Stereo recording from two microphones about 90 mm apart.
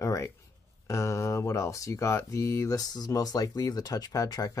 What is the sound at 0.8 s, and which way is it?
Speech, 35° left (ahead or behind).